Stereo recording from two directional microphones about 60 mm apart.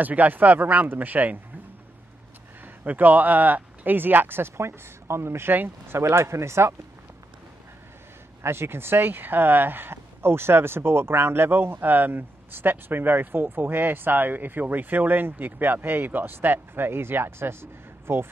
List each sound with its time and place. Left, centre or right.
0.0 s speech: right
2.6 s speech: right
5.9 s speech: right
8.4 s speech: right